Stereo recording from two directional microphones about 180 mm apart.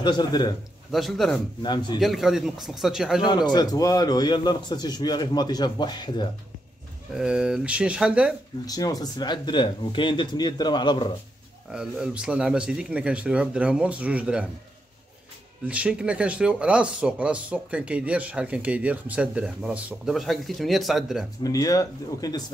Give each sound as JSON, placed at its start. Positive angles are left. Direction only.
{"t": 0.0, "sound": "a man's voice", "side_deg": 25}
{"t": 0.9, "sound": "speech", "side_deg": 0}
{"t": 1.6, "sound": "a man's voice", "side_deg": 25}
{"t": 2.0, "sound": "speech", "side_deg": 0}
{"t": 3.3, "sound": "a man's voice", "side_deg": 25}
{"t": 7.2, "sound": "speech", "side_deg": -5}
{"t": 8.6, "sound": "a man's voice", "side_deg": 20}
{"t": 11.7, "sound": "speech", "side_deg": -5}
{"t": 15.6, "sound": "speech", "side_deg": -5}
{"t": 21.4, "sound": "a man's voice", "side_deg": 20}